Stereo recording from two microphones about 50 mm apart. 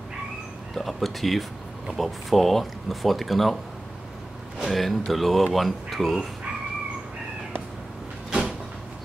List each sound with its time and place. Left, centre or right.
0.7 s speech: centre
4.6 s speech: centre
8.3 s a sound: centre